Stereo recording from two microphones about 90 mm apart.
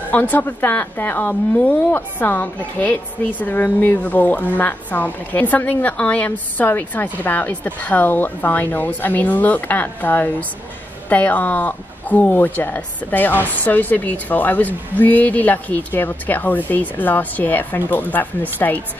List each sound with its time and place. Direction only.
0.1 s a woman's voice: 20° left (ahead or behind)